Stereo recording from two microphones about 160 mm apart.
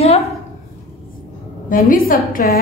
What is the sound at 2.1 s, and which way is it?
Speech, 60° left (ahead or behind).